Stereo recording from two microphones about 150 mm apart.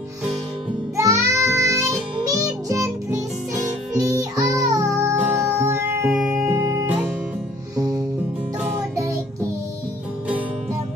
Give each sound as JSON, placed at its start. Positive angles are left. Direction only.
{"t": 0.9, "sound": "child singing", "side_deg": -20}
{"t": 3.9, "sound": "music", "side_deg": -20}
{"t": 6.0, "sound": "music", "side_deg": -5}
{"t": 6.3, "sound": "music", "side_deg": -20}